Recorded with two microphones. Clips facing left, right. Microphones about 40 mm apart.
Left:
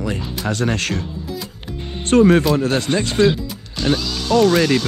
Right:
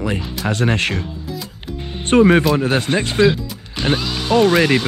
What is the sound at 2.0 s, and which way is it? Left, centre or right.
Speech, right.